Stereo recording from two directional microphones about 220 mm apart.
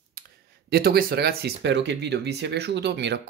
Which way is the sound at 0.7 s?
45° right (ahead or behind).